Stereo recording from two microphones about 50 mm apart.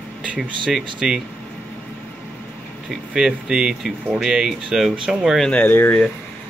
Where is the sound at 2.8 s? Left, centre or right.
Centre.